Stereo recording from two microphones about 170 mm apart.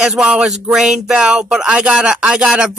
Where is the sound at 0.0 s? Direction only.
5° right (ahead or behind).